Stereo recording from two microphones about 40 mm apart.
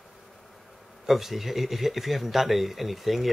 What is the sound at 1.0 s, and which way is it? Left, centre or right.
Speech, centre.